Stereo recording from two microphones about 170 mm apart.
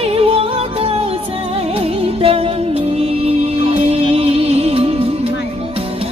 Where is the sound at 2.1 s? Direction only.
35° right (ahead or behind).